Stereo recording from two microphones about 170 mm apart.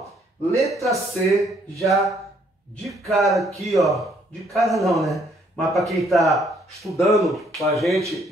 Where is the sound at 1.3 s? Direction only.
20° right (ahead or behind).